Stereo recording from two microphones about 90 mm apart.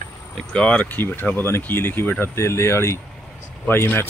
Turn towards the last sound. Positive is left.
turn(degrees=25)  # may be behind; listen again after turning